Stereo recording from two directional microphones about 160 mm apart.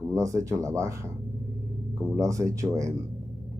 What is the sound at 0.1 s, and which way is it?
Speech, 20° right (ahead or behind).